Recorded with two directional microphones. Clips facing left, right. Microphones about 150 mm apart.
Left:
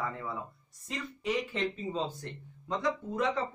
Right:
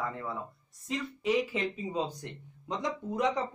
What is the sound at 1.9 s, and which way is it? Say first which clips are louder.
Speech: right 1 dB; 15° right (ahead or behind).